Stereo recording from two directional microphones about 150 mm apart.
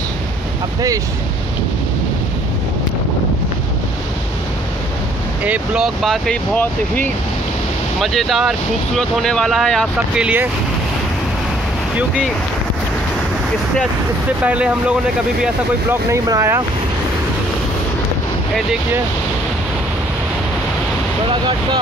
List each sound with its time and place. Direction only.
5.4 s speech: 10° right (ahead or behind)
6.0 s speech: 5° left (ahead or behind)
8.0 s speech: centre (ahead or behind)
10.2 s speech: 10° right (ahead or behind)
14.4 s speech: 10° right (ahead or behind)
15.9 s speech: 20° right (ahead or behind)
21.3 s speech: 30° right (ahead or behind)